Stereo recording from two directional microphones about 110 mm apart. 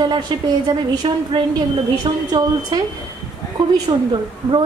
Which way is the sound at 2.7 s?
40° right (ahead or behind).